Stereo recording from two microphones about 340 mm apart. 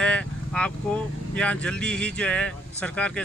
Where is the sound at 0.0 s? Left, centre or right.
Centre.